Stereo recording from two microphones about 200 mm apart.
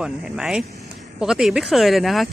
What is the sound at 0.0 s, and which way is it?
A woman's voice, 5° right (ahead or behind).